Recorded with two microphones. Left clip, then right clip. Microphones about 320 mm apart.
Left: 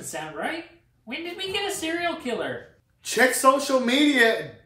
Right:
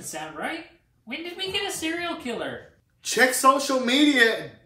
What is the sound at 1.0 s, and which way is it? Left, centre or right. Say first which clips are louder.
Speech: even; centre.